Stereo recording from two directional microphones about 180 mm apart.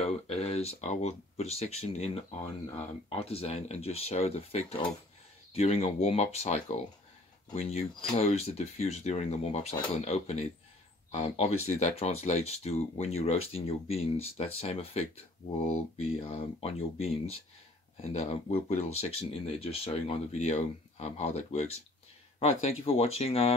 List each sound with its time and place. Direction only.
0.0 s speech: 35° left (ahead or behind)